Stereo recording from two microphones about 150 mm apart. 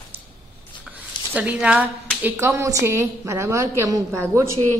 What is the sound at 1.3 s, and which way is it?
A woman's voice, 5° right (ahead or behind).